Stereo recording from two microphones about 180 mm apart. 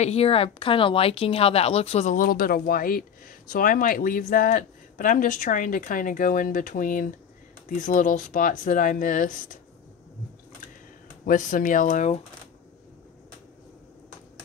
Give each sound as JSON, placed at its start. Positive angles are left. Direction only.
{"t": 0.0, "sound": "speech", "side_deg": 35}
{"t": 11.2, "sound": "speech", "side_deg": 45}